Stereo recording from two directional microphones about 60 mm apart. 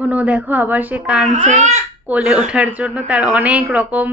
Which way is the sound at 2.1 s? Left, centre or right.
Centre.